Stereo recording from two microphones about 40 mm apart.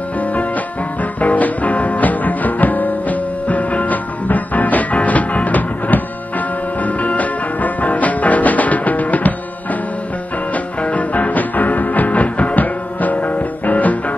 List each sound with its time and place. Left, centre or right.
1.2 s music: left
10.5 s music: left